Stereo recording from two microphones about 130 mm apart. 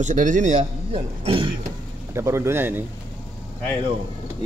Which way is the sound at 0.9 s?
45° right (ahead or behind).